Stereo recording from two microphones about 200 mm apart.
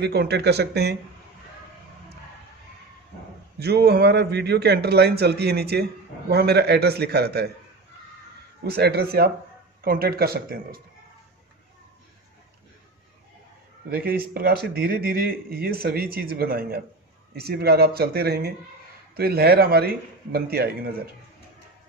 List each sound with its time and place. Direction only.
0.0 s speech: 55° right (ahead or behind)
3.5 s speech: 50° right (ahead or behind)
8.6 s speech: 55° right (ahead or behind)
13.8 s speech: 50° right (ahead or behind)